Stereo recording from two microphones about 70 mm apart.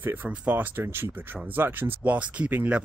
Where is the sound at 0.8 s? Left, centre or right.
Right.